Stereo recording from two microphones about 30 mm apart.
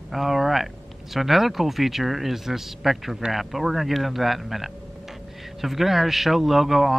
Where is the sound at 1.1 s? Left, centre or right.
Centre.